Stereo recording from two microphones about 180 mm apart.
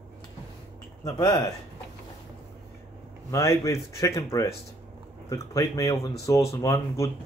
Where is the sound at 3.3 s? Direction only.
15° left (ahead or behind).